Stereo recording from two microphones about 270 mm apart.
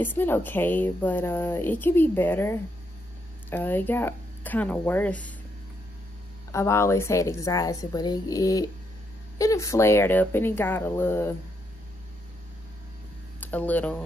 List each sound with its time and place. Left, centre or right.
0.0 s speech: centre
6.5 s speech: centre
13.4 s speech: centre